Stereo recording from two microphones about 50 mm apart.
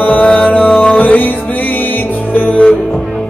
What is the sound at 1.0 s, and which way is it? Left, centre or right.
Music, left.